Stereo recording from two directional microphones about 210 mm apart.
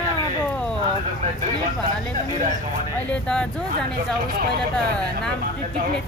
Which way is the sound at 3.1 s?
5° left (ahead or behind).